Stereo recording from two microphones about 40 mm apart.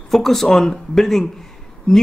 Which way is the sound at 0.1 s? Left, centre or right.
Centre.